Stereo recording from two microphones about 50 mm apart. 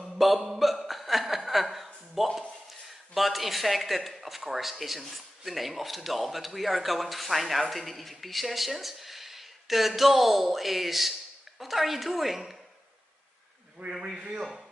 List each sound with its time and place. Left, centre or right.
0.0 s a sound: centre
2.2 s speech: centre
14.0 s a man's voice: centre